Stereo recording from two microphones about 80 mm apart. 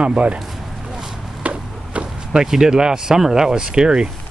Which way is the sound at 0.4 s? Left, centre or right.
Centre.